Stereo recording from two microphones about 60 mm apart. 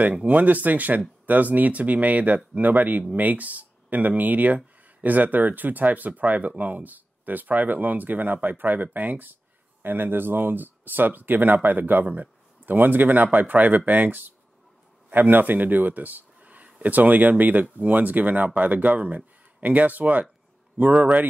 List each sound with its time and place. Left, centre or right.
0.1 s speech: right